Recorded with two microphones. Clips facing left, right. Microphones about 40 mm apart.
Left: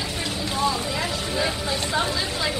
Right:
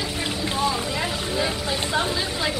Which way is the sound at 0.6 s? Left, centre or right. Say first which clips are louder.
Left 1 dB; centre.